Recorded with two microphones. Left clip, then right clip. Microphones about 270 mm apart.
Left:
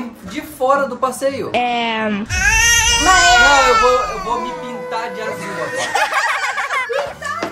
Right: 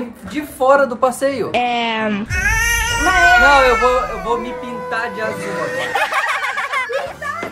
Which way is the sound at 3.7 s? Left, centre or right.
Left.